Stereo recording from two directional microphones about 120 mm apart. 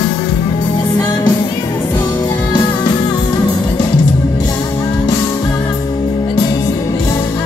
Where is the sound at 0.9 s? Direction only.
30° left (ahead or behind).